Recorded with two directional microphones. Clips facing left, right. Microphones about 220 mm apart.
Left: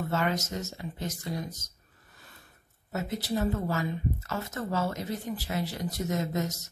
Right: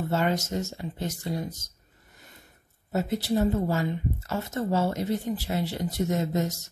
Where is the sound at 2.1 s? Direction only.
20° right (ahead or behind).